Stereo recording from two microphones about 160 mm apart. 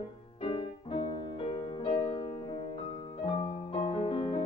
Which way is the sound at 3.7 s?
35° left (ahead or behind).